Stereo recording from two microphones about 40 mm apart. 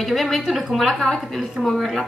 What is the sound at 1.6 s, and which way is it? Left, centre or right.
Speech, centre.